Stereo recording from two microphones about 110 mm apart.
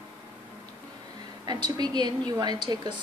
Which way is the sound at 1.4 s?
40° right (ahead or behind).